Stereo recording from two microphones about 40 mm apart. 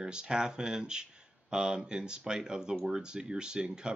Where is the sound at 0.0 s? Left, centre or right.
Centre.